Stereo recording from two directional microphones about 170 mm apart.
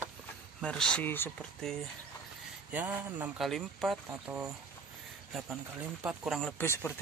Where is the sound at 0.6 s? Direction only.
5° left (ahead or behind).